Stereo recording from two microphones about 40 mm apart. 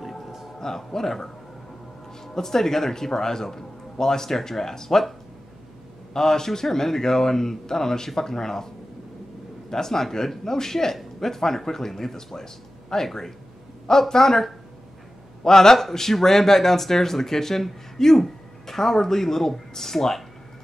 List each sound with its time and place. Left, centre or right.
0.6 s a man's voice: centre
6.1 s a man's voice: centre